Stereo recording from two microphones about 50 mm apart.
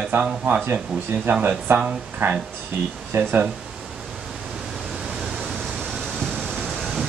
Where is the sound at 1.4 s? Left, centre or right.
Right.